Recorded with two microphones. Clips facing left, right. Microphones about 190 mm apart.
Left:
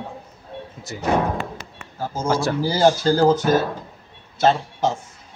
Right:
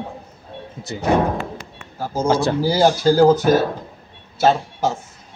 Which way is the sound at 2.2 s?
25° right (ahead or behind).